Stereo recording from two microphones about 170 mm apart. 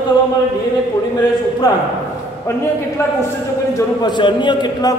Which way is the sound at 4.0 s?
25° left (ahead or behind).